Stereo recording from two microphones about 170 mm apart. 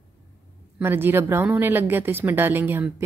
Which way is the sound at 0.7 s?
10° right (ahead or behind).